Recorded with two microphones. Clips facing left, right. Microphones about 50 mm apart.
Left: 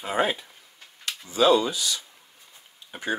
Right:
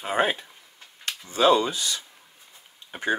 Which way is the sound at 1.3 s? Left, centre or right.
Right.